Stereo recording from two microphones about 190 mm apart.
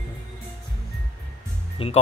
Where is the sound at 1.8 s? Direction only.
30° left (ahead or behind).